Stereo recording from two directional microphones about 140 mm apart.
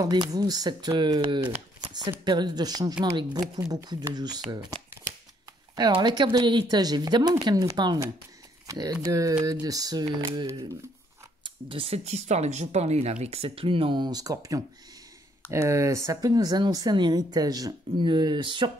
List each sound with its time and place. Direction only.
0.0 s speech: 30° right (ahead or behind)
5.8 s speech: 35° right (ahead or behind)
11.4 s speech: 40° right (ahead or behind)